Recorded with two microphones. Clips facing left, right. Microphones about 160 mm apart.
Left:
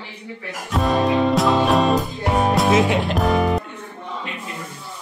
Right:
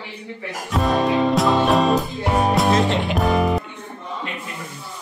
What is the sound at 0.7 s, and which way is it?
Music, centre (ahead or behind).